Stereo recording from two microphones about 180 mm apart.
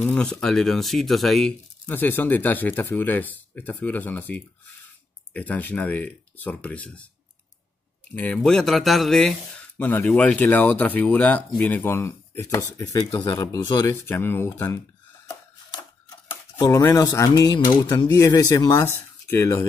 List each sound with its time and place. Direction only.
0.0 s speech: 5° left (ahead or behind)
8.1 s speech: 10° left (ahead or behind)
16.5 s speech: 25° left (ahead or behind)